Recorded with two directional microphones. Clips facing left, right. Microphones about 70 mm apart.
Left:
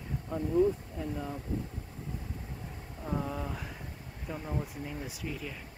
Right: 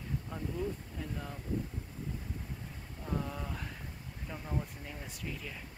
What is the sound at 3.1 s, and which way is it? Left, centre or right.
Speech, centre.